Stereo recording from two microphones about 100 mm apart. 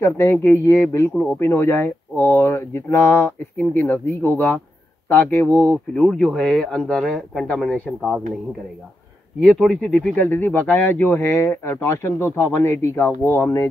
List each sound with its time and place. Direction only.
0.0 s speech: 25° left (ahead or behind)
1.1 s a man's voice: 15° left (ahead or behind)
9.4 s speech: 10° left (ahead or behind); by 13.7 s 25° left (ahead or behind)